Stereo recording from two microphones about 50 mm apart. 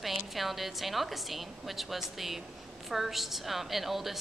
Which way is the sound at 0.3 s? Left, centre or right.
Centre.